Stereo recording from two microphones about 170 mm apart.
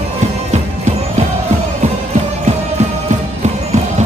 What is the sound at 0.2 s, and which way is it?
Music, 45° right (ahead or behind).